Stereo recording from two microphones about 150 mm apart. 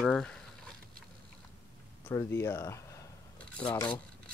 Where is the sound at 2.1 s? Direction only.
20° left (ahead or behind).